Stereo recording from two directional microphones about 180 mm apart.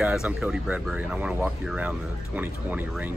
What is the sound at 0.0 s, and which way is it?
Speech, 5° right (ahead or behind).